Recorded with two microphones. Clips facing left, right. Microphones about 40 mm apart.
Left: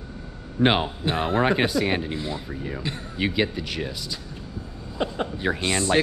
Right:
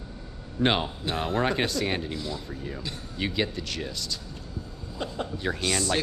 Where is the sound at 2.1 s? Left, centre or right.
Left.